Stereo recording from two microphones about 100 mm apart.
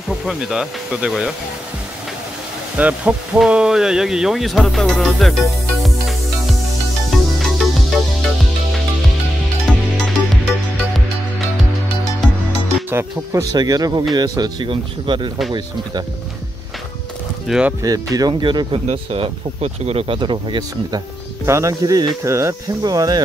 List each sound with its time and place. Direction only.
0.1 s insect: 5° right (ahead or behind)
2.8 s a sound: 15° right (ahead or behind)
3.3 s speech: 10° right (ahead or behind)
7.1 s music: centre (ahead or behind)
12.9 s speech: 30° right (ahead or behind)
14.7 s speech: 55° right (ahead or behind)
17.5 s a sound: 10° right (ahead or behind)
17.8 s speech: 35° right (ahead or behind)
18.4 s speech: 50° right (ahead or behind)
18.9 s speech: 65° right (ahead or behind); by 20.2 s 85° right
20.2 s speech: 50° right (ahead or behind)
21.5 s speech: 30° right (ahead or behind)